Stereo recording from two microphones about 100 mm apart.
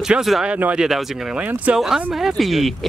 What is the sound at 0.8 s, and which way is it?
Speech, 5° right (ahead or behind).